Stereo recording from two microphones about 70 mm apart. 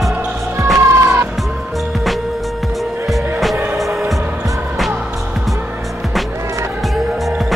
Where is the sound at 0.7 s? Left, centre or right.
Right.